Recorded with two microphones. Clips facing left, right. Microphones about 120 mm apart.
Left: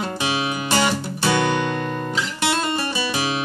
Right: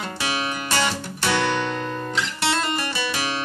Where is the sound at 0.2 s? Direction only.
20° left (ahead or behind).